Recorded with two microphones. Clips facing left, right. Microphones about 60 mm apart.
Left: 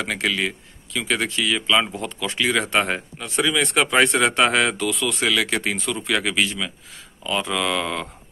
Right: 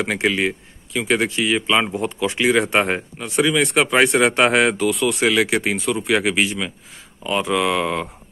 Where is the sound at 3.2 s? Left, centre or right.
Centre.